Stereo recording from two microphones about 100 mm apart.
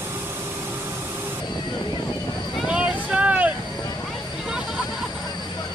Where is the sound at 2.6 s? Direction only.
10° right (ahead or behind).